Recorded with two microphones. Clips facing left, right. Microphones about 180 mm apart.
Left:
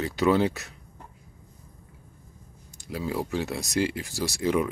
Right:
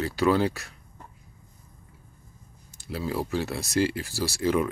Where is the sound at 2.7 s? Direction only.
15° left (ahead or behind).